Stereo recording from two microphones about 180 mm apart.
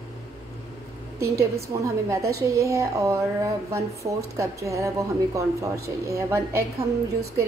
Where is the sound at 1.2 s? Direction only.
15° right (ahead or behind).